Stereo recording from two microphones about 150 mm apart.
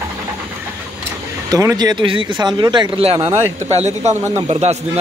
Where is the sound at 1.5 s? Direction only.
25° right (ahead or behind).